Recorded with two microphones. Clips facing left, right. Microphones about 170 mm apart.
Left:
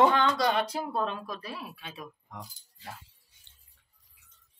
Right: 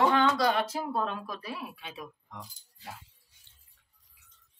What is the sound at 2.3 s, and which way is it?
Speech, 10° left (ahead or behind).